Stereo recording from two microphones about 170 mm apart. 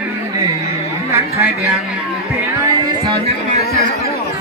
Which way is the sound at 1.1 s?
10° right (ahead or behind).